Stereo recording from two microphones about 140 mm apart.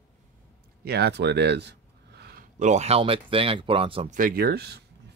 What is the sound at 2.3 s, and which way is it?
Speech, 55° right (ahead or behind).